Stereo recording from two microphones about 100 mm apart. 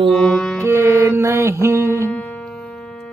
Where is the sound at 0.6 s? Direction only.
25° right (ahead or behind).